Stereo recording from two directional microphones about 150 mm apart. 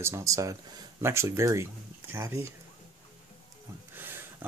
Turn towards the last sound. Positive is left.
turn(degrees=-15)  # may be behind; listen again after turning